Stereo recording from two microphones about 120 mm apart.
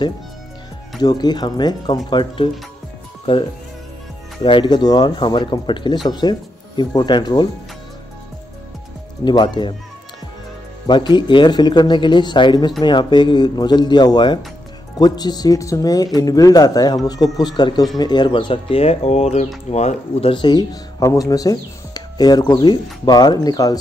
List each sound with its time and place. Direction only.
1.0 s speech: 35° left (ahead or behind)
4.4 s speech: 45° left (ahead or behind)
9.2 s speech: 40° left (ahead or behind)
10.9 s speech: 40° left (ahead or behind)